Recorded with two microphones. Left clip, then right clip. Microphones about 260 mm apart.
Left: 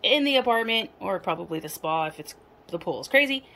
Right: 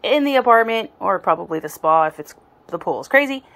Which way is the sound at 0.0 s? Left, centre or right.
Right.